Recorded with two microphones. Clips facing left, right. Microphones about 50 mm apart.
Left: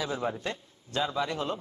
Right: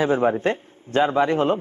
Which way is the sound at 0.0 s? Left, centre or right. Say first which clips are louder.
Right 12 dB; right.